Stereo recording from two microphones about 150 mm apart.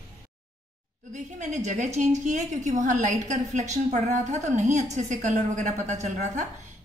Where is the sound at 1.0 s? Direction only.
55° right (ahead or behind).